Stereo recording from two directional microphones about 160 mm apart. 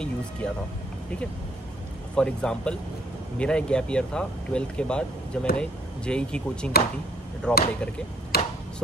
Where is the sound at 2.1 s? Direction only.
5° left (ahead or behind).